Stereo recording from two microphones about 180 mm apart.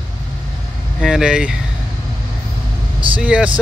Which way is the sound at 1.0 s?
5° right (ahead or behind).